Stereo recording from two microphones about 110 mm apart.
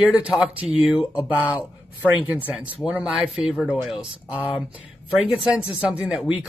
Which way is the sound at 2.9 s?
5° right (ahead or behind).